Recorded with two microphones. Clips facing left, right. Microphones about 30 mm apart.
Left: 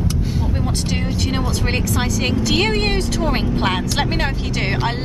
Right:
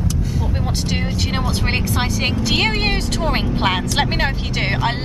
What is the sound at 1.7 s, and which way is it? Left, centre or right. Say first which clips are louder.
Speech: even; centre.